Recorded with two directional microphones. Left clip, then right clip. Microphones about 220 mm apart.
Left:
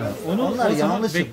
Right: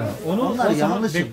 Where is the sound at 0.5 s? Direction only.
25° left (ahead or behind).